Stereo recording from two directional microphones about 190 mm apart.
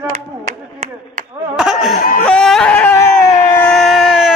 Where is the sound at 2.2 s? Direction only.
5° left (ahead or behind).